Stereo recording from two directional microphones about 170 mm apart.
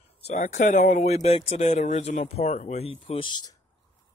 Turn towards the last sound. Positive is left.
turn(degrees=25)  # may be behind; listen again after turning